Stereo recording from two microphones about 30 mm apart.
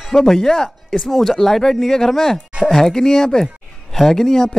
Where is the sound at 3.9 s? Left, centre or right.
Centre.